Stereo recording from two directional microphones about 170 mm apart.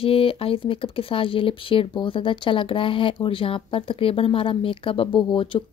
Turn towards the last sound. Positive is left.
turn(degrees=30)  # may be behind; listen again after turning